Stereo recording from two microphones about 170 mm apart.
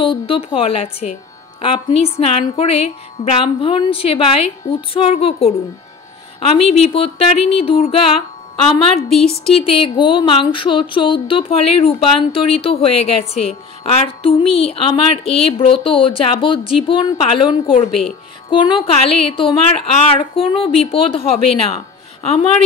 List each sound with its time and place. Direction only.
0.0 s speech: 30° left (ahead or behind)
21.6 s music: 40° left (ahead or behind)